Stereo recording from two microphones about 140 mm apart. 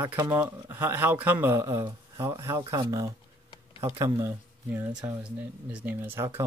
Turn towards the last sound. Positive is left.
turn(degrees=-20)  # may be behind; listen again after turning